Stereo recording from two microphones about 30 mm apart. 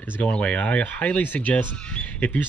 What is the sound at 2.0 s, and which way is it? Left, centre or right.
Speech, left.